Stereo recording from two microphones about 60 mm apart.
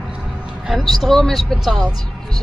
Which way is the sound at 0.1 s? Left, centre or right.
Centre.